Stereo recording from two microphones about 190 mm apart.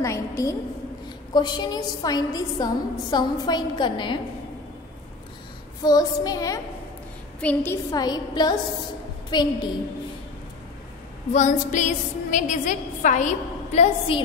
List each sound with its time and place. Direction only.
0.0 s a woman's voice: 15° left (ahead or behind)
5.8 s a woman's voice: 20° left (ahead or behind)
11.3 s a woman's voice: 40° left (ahead or behind)